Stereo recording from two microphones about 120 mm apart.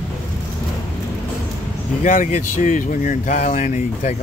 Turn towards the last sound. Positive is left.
turn(degrees=85)